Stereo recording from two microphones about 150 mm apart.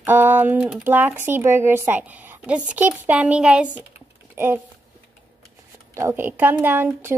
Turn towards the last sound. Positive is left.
turn(degrees=-15)  # may be behind; listen again after turning